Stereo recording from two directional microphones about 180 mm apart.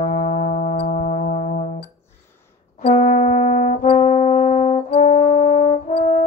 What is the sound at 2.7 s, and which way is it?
Brass instrument, 40° left (ahead or behind).